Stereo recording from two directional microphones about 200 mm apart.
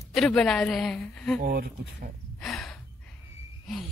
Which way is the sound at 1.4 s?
50° right (ahead or behind).